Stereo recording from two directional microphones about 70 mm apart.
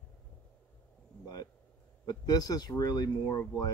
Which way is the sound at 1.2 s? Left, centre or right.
Left.